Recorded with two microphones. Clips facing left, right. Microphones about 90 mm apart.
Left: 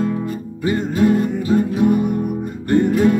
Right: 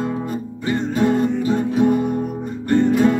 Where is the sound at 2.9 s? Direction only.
20° right (ahead or behind).